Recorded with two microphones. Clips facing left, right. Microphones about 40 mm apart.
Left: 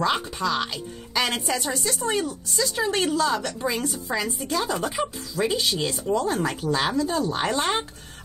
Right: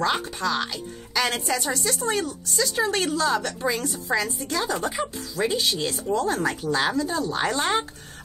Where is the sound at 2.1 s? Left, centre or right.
Centre.